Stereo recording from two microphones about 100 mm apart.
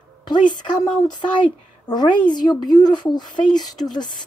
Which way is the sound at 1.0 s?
50° left (ahead or behind).